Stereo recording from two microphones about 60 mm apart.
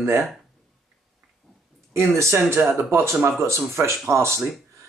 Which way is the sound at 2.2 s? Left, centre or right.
Right.